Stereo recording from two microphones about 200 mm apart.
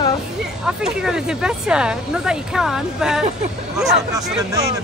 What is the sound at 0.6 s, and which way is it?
Speech, 5° right (ahead or behind).